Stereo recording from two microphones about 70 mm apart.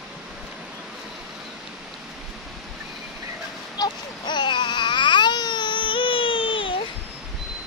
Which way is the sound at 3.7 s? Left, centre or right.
Left.